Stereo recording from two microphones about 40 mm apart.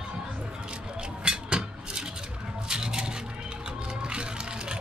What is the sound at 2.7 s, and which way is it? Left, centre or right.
Coin, centre.